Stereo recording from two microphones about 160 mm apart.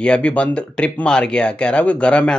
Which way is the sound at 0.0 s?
5° left (ahead or behind).